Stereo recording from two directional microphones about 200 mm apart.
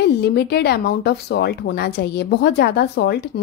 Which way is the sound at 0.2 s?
55° left (ahead or behind).